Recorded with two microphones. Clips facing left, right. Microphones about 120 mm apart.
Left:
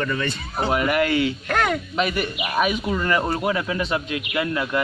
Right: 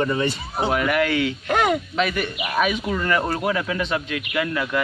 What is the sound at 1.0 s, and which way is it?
Speech, 35° left (ahead or behind).